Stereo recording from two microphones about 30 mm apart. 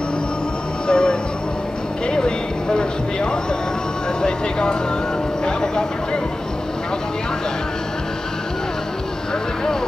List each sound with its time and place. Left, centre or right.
0.8 s a sound: left
4.2 s speech: left
5.4 s vehicle: left